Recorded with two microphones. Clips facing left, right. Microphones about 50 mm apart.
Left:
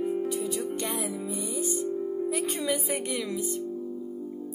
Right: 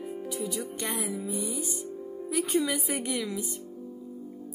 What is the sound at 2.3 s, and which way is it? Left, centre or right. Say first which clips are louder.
A woman's voice: right 6 dB; centre.